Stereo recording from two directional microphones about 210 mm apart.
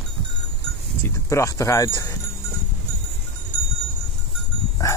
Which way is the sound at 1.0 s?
15° left (ahead or behind).